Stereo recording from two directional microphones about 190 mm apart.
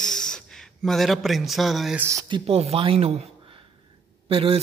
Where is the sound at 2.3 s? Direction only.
30° right (ahead or behind).